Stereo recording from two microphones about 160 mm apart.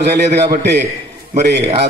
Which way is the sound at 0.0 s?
90° right.